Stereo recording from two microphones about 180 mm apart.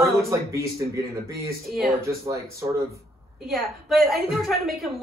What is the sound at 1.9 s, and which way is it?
Speech, 15° right (ahead or behind).